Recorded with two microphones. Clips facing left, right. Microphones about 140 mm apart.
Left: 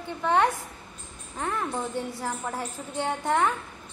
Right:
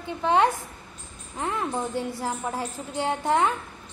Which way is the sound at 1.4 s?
10° right (ahead or behind).